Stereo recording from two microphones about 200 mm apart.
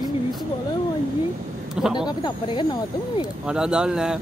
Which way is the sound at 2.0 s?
20° left (ahead or behind).